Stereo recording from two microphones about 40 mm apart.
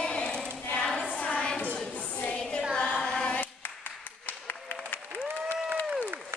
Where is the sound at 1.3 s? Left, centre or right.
Left.